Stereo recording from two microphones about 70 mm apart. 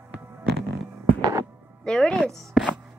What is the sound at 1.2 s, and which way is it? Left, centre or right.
Music, right.